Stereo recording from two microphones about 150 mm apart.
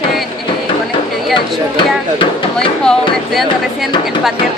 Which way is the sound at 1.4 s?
35° left (ahead or behind).